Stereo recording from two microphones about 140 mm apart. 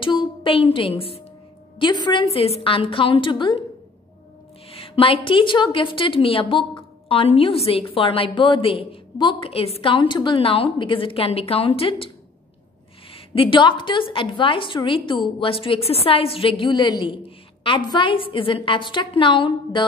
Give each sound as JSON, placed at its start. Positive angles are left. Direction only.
{"t": 0.0, "sound": "a sound", "side_deg": 35}
{"t": 0.7, "sound": "a woman's voice", "side_deg": 40}
{"t": 1.8, "sound": "a woman's voice", "side_deg": 30}
{"t": 4.7, "sound": "a woman's voice", "side_deg": 40}
{"t": 13.1, "sound": "a woman's voice", "side_deg": 40}